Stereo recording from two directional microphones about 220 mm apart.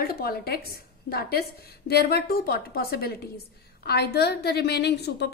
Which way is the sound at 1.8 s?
45° left (ahead or behind).